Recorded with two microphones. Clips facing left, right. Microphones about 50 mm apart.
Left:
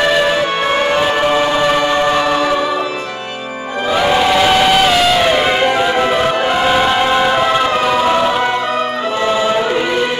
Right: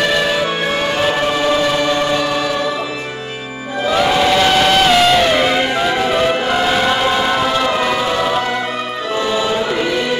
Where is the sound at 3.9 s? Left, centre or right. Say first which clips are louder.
Left 1 dB; centre.